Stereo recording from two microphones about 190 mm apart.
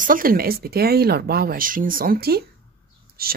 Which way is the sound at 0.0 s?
45° right (ahead or behind).